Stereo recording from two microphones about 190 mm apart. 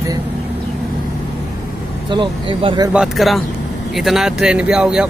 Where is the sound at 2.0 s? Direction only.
25° right (ahead or behind).